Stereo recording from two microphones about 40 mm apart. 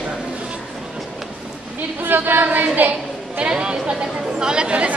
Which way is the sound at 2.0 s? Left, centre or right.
Right.